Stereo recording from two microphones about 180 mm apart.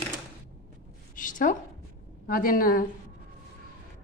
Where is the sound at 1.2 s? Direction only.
45° left (ahead or behind).